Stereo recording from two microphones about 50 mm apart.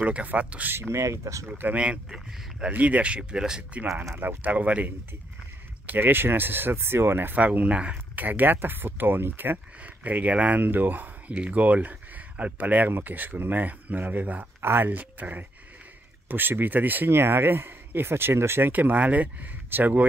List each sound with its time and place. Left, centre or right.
0.0 s speech: right
0.7 s speech: right
1.8 s speech: right
3.8 s speech: right
4.1 s speech: right
5.9 s speech: right
7.3 s speech: right
8.3 s speech: right
9.8 s speech: right
14.6 s speech: right
14.9 s speech: right
18.7 s speech: right